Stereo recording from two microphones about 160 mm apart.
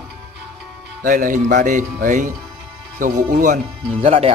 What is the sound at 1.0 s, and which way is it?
Speech, 60° right (ahead or behind).